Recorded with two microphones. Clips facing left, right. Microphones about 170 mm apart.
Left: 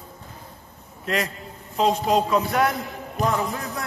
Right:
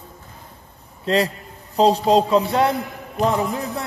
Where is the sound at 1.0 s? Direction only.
30° right (ahead or behind).